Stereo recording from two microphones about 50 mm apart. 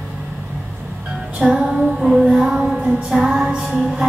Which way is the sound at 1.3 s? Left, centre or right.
Centre.